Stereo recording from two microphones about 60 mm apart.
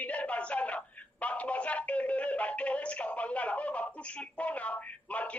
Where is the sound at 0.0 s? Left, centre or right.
Left.